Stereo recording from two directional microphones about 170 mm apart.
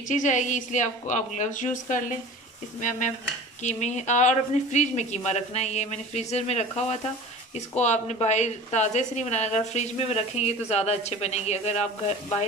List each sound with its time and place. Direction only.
0.1 s a woman's voice: 45° left (ahead or behind)